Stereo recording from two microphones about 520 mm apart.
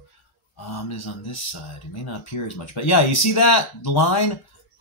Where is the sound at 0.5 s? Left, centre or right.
Left.